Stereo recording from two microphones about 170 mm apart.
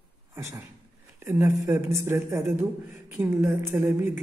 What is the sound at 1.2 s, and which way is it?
A man's voice, 15° right (ahead or behind).